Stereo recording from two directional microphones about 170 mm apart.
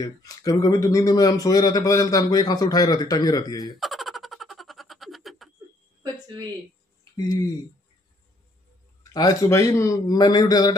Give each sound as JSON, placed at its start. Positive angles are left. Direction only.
{"t": 0.0, "sound": "speech", "side_deg": 20}
{"t": 3.7, "sound": "a sound", "side_deg": 0}
{"t": 9.1, "sound": "speech", "side_deg": 20}